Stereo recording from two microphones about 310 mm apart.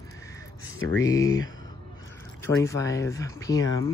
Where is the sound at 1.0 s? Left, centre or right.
Centre.